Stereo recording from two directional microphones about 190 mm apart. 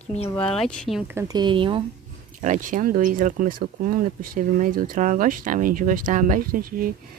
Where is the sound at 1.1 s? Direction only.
20° right (ahead or behind).